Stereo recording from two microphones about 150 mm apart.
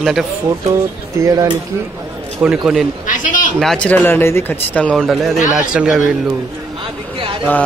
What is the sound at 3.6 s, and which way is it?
Speech, 5° left (ahead or behind).